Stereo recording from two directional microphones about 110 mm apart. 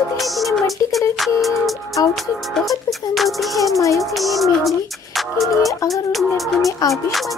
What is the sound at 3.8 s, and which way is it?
Music, 30° left (ahead or behind).